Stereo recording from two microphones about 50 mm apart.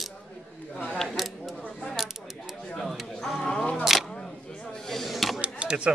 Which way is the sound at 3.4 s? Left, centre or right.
Centre.